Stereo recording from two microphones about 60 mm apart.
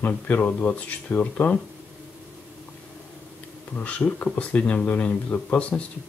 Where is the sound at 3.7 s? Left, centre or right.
Left.